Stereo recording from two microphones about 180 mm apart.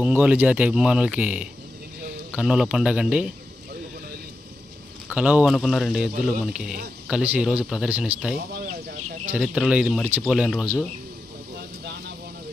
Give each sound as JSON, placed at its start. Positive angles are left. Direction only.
{"t": 0.0, "sound": "speech", "side_deg": -10}
{"t": 5.1, "sound": "speech", "side_deg": -5}
{"t": 8.5, "sound": "a sound", "side_deg": -60}
{"t": 9.2, "sound": "speech", "side_deg": -10}